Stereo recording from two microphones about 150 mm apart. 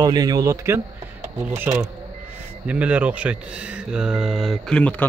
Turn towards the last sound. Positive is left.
turn(degrees=10)  # may be behind; listen again after turning